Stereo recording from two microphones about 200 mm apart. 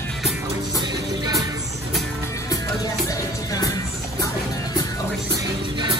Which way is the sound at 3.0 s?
15° left (ahead or behind).